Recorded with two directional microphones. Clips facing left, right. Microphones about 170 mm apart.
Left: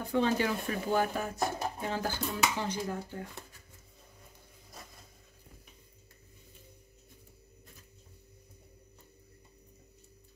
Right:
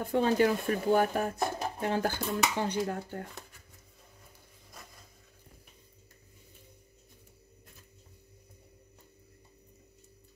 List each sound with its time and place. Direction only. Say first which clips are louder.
0.0 s speech: right 3 dB; 45° right (ahead or behind)